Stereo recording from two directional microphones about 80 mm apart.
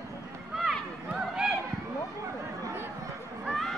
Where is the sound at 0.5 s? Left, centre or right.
Centre.